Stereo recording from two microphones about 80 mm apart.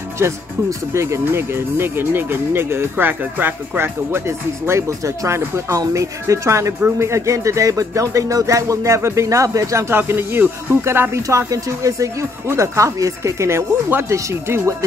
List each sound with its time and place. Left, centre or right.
0.2 s speech: right
11.2 s speech: right